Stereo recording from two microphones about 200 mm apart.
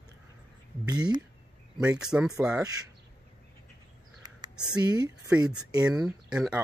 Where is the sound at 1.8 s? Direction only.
5° right (ahead or behind).